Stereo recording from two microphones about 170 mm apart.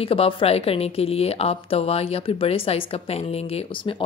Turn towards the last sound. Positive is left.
turn(degrees=30)  # may be behind; listen again after turning